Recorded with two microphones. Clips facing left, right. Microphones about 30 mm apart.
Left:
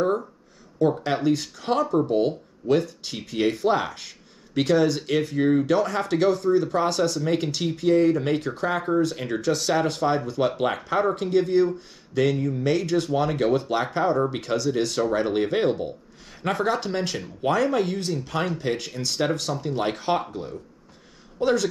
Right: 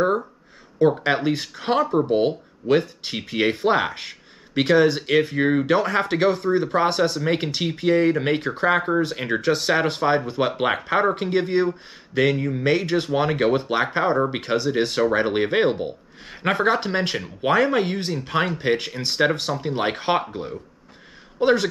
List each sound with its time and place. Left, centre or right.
0.7 s speech: right